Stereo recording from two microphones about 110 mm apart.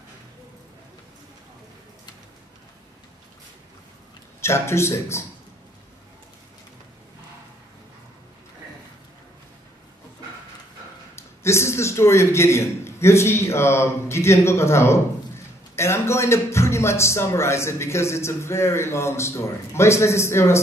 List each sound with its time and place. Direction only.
4.4 s a man's voice: 25° left (ahead or behind)
11.1 s a man's voice: 25° left (ahead or behind)